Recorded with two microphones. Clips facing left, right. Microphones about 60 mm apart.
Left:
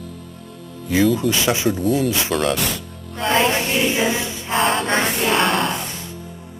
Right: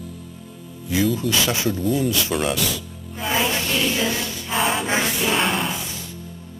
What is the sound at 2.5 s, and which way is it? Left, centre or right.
Speech, left.